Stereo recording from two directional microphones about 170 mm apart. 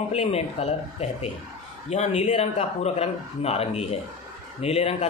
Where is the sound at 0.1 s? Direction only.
40° left (ahead or behind).